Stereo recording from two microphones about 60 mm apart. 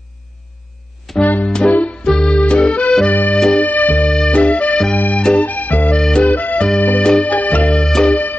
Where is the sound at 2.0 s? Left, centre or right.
Centre.